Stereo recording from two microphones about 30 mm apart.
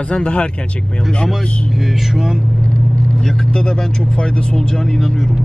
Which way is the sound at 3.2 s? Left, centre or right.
Left.